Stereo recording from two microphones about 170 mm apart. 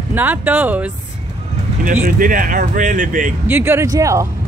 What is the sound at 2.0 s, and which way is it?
Speech, 55° right (ahead or behind).